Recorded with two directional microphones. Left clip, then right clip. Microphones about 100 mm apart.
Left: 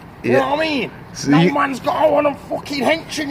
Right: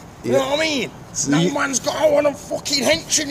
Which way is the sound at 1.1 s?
20° right (ahead or behind).